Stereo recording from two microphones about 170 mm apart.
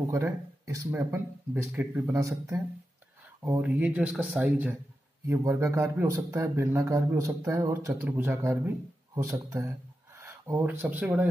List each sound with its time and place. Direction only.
0.1 s a man's voice: 15° right (ahead or behind)